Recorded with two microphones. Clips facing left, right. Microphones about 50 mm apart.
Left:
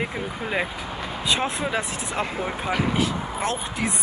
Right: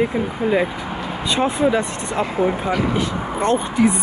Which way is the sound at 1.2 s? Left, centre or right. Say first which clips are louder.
Right 7 dB; centre.